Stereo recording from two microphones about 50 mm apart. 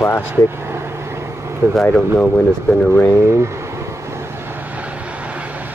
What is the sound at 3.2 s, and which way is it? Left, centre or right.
Speech, right.